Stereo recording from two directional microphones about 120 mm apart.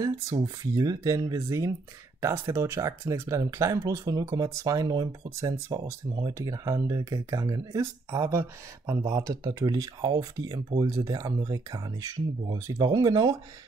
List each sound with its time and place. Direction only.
0.0 s speech: 30° right (ahead or behind)
4.0 s speech: 35° right (ahead or behind)